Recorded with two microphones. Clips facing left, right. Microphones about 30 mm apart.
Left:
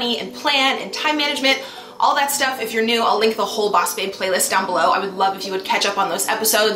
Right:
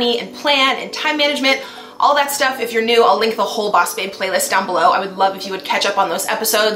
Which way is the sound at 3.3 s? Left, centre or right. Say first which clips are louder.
Right 2 dB; right.